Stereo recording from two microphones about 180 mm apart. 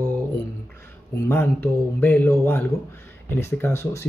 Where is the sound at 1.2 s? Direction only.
10° left (ahead or behind).